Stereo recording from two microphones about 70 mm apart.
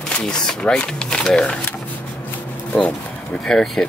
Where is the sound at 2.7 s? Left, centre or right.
Centre.